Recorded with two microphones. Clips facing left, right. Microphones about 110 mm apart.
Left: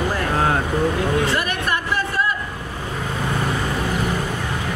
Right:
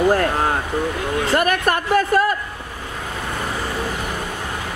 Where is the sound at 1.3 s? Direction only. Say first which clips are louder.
Right 5 dB; 55° right (ahead or behind).